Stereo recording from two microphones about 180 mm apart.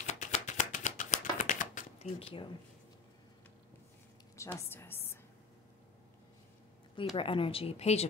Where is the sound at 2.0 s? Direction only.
30° left (ahead or behind).